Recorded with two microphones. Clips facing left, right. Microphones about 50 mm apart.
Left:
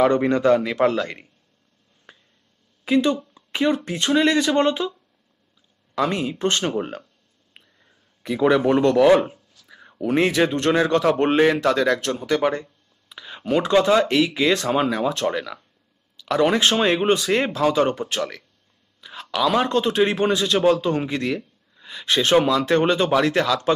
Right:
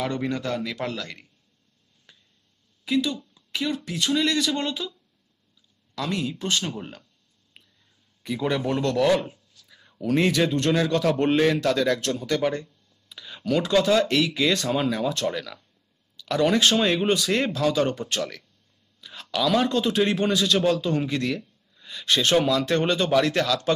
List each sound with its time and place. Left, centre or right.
0.1 s speech: left
2.1 s finger snapping: left
2.8 s speech: left
6.0 s speech: left
6.3 s speech: left
8.4 s speech: left
9.2 s a sound: left
10.7 s speech: left
11.6 s speech: centre
12.1 s speech: left
18.9 s a sound: centre
19.4 s speech: left